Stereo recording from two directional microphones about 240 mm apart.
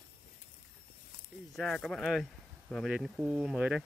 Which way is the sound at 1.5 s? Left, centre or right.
Centre.